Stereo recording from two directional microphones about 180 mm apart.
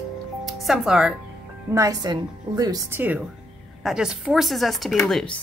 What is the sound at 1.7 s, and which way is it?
A woman's voice, 20° right (ahead or behind).